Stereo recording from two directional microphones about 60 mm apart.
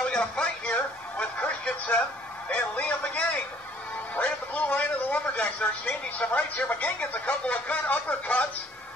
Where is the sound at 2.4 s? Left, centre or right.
Left.